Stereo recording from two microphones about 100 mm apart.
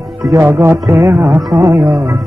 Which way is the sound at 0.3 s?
25° right (ahead or behind).